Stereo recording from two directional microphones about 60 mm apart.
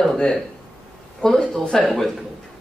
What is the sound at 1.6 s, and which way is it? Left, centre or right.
Speech, centre.